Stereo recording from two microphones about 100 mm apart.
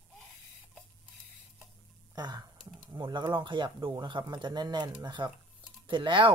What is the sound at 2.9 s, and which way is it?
Speech, 55° right (ahead or behind).